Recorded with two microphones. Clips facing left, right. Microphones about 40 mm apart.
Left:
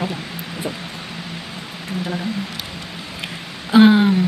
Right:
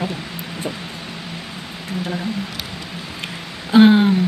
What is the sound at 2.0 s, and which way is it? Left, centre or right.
Speech, centre.